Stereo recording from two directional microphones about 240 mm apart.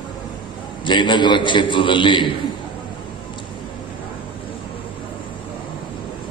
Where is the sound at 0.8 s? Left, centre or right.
Centre.